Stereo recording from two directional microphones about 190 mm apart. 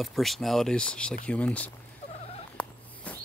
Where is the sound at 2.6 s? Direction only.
5° left (ahead or behind).